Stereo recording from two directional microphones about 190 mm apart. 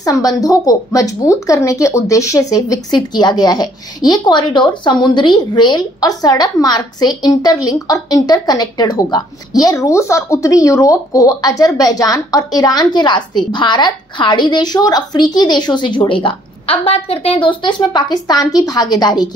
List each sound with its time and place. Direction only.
0.0 s speech: 20° left (ahead or behind)